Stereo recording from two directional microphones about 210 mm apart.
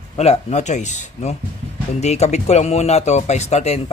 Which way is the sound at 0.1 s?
30° left (ahead or behind).